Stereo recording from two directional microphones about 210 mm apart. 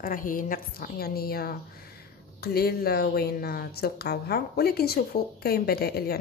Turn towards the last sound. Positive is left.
turn(degrees=50)  # may be behind; listen again after turning